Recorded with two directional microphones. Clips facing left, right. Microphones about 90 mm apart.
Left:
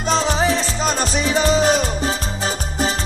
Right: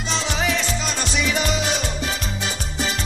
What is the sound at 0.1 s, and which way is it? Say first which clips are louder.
Music: left 6 dB; 40° left (ahead or behind).